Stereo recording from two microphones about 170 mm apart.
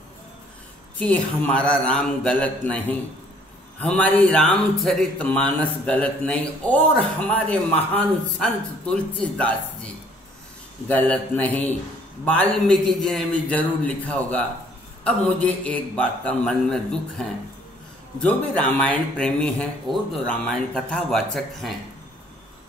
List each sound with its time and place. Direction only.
0.9 s speech: 10° left (ahead or behind)